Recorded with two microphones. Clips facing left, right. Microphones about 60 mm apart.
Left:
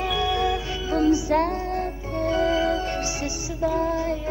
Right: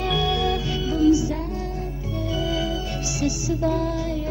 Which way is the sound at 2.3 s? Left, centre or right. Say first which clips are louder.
Left 5 dB; left.